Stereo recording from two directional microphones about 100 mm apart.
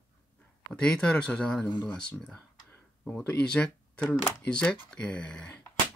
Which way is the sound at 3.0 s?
10° left (ahead or behind).